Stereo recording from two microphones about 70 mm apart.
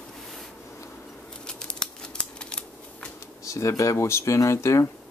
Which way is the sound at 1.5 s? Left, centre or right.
Centre.